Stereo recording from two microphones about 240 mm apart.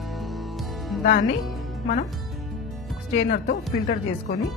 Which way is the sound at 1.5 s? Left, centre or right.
Centre.